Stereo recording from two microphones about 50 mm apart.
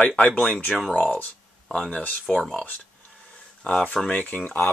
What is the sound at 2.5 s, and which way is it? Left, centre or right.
Speech, left.